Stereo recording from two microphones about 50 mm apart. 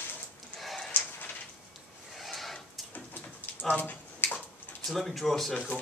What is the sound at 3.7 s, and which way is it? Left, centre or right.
Bathtub, left.